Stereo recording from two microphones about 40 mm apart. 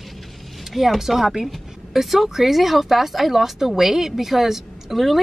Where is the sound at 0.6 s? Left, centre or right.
Centre.